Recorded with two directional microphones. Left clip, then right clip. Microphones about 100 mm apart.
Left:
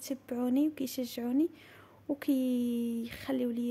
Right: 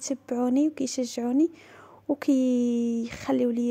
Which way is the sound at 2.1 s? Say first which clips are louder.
Right 7 dB; 50° right (ahead or behind).